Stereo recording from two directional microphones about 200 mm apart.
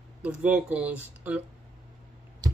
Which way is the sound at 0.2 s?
5° right (ahead or behind).